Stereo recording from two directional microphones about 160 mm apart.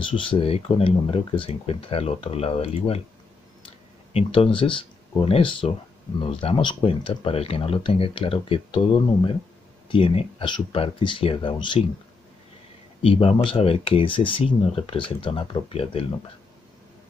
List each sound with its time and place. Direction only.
0.0 s speech: 30° left (ahead or behind)
4.1 s speech: 35° left (ahead or behind)
13.0 s speech: 35° left (ahead or behind)